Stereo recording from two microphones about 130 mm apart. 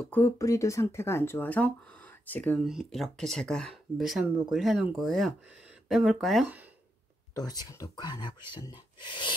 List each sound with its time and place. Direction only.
0.1 s speech: 20° left (ahead or behind)
2.6 s speech: 5° right (ahead or behind)
7.3 s speech: 30° left (ahead or behind)